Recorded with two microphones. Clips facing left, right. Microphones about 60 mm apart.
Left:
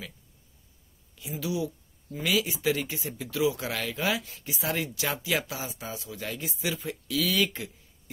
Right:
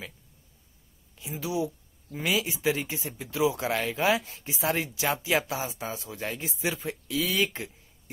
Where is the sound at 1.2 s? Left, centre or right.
Right.